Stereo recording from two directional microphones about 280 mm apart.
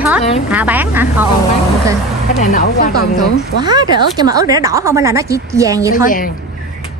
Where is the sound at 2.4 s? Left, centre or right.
Left.